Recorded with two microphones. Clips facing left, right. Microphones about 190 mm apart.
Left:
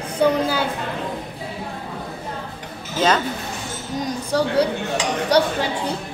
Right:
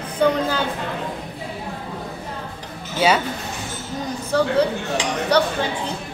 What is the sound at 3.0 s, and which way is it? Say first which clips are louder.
Speech: right 1 dB; 10° right (ahead or behind).